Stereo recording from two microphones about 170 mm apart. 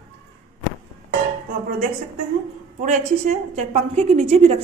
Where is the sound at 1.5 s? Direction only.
55° right (ahead or behind).